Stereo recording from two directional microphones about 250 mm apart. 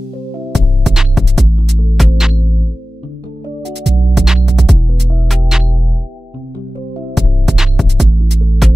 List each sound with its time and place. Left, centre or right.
0.5 s music: centre
3.6 s music: right
4.1 s music: centre
7.2 s music: centre